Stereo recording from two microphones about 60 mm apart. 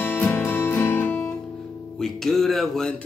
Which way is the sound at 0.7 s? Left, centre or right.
Left.